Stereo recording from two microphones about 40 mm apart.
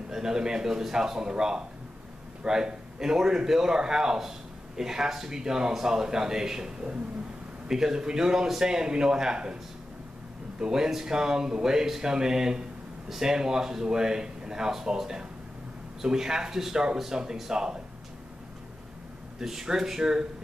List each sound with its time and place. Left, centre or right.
0.1 s speech: centre
10.6 s speech: centre
19.4 s speech: centre